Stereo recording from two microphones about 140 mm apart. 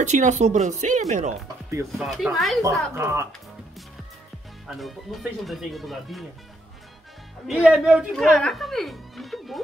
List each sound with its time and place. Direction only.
0.0 s speech: 60° right (ahead or behind)
2.0 s speech: centre (ahead or behind)
3.0 s speech: 20° right (ahead or behind)
4.6 s speech: centre (ahead or behind)
7.4 s speech: 5° right (ahead or behind)